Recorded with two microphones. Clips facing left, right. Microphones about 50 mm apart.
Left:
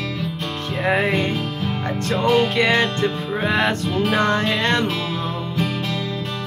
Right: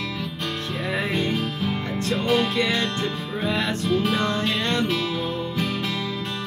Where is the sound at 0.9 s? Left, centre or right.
Left.